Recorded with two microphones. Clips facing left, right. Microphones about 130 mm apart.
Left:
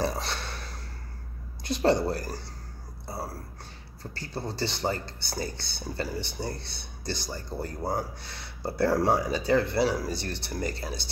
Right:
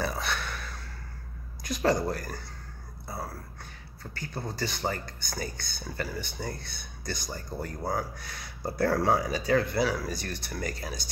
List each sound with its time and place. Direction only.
0.0 s a sound: 35° left (ahead or behind)
1.6 s speech: 30° left (ahead or behind)
4.0 s speech: 35° left (ahead or behind)